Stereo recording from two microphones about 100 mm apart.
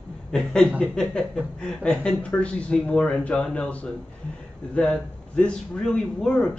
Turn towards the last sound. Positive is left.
turn(degrees=5)  # may be behind; listen again after turning